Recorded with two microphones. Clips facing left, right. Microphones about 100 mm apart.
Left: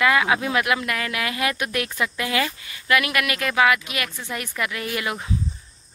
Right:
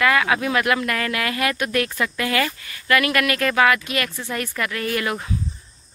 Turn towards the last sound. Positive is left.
turn(degrees=15)  # may be behind; listen again after turning